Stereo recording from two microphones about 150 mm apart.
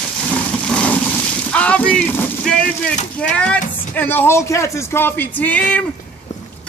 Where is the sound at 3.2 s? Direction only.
5° left (ahead or behind).